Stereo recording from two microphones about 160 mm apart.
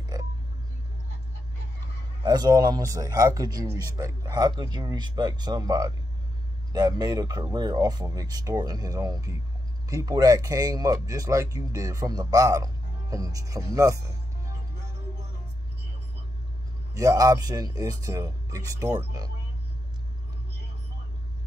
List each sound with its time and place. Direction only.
2.2 s speech: 25° right (ahead or behind)
16.9 s speech: 20° right (ahead or behind)